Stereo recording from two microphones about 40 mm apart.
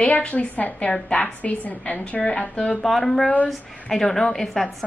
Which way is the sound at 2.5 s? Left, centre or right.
Left.